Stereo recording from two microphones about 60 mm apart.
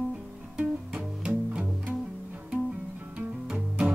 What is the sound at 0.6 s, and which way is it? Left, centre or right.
Music, centre.